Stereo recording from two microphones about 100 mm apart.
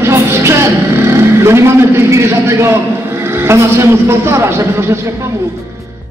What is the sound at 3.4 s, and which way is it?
A man's voice, 30° right (ahead or behind).